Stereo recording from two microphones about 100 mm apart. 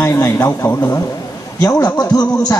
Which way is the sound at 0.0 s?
25° left (ahead or behind).